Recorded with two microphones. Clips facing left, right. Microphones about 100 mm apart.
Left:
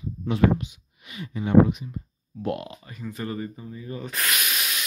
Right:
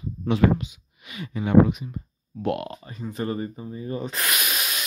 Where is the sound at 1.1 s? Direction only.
85° right.